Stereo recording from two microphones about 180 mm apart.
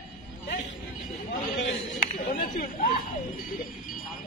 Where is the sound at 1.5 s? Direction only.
90° left.